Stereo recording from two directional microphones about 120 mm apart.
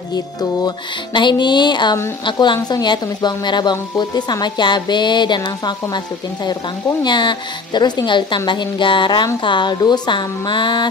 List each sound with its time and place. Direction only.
0.1 s music: 35° left (ahead or behind)
7.0 s music: 40° left (ahead or behind)